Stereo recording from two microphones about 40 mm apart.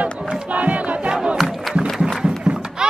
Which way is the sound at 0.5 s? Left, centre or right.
Right.